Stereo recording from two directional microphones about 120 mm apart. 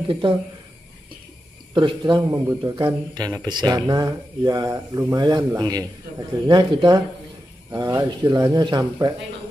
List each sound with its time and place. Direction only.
0.1 s speech: 40° right (ahead or behind)
1.7 s speech: 40° right (ahead or behind)
2.2 s speech: 25° right (ahead or behind)